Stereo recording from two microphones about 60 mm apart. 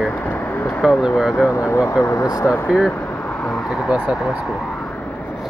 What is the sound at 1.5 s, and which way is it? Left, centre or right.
Speech, left.